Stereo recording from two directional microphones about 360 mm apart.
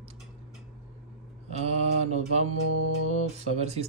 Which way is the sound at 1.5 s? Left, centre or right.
Centre.